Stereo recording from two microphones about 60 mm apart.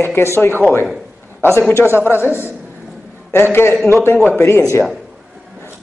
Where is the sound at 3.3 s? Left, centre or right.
Left.